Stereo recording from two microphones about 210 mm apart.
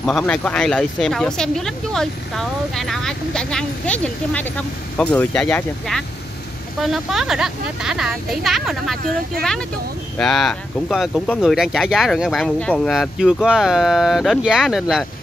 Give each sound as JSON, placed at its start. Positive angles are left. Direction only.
{"t": 0.0, "sound": "speech", "side_deg": 5}
{"t": 10.1, "sound": "speech", "side_deg": 0}